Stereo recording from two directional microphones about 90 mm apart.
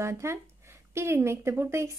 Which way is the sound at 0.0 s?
30° right (ahead or behind).